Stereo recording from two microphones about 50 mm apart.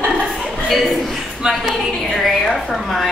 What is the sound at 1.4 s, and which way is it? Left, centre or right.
Speech, centre.